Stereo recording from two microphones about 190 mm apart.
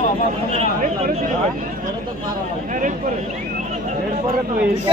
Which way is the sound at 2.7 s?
40° right (ahead or behind).